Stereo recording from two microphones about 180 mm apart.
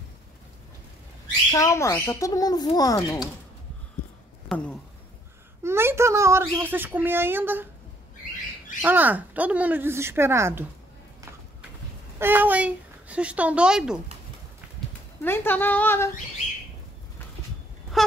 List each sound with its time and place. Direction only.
1.5 s a child's voice: 15° left (ahead or behind)
5.6 s a child's voice: 15° right (ahead or behind)
8.8 s a child's voice: 10° right (ahead or behind)
12.2 s a child's voice: 10° right (ahead or behind)
15.2 s a woman's voice: 10° left (ahead or behind)
17.9 s a sound: centre (ahead or behind)